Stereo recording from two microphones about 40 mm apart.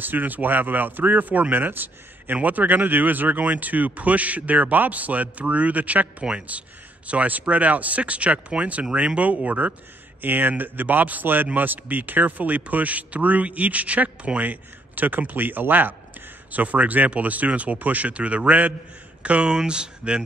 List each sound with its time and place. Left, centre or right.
0.0 s speech: right
2.3 s speech: right
10.2 s speech: right
16.5 s speech: right
19.5 s speech: right